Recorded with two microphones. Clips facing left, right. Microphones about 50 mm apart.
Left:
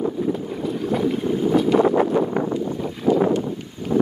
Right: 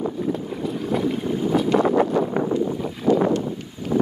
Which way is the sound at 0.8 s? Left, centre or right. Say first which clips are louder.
Left 2 dB; centre.